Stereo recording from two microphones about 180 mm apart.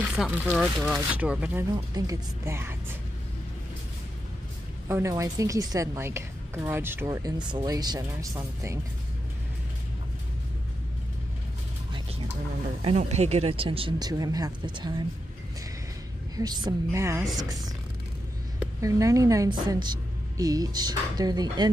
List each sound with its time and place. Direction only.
0.1 s a woman's voice: 5° right (ahead or behind)
4.8 s a woman's voice: 15° right (ahead or behind)
7.1 s speech: 25° right (ahead or behind)
12.8 s speech: 35° right (ahead or behind)
16.3 s speech: 25° right (ahead or behind)
18.8 s a woman's voice: 15° right (ahead or behind)